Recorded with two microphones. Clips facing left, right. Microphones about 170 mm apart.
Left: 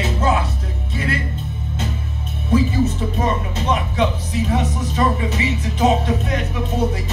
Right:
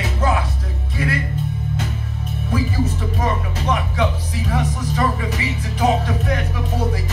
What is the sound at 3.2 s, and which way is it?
Music, 25° left (ahead or behind).